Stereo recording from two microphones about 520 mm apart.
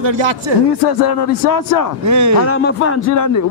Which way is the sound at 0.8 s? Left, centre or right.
Left.